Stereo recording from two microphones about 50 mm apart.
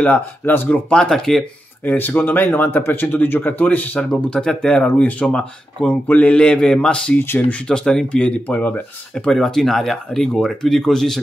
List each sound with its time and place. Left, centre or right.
0.0 s speech: left
0.9 s speech: centre
1.9 s speech: left
4.1 s speech: centre
4.8 s speech: left
5.2 s speech: centre
6.0 s speech: left
6.3 s speech: centre
7.2 s speech: left
7.6 s speech: centre
8.5 s speech: left
9.2 s speech: centre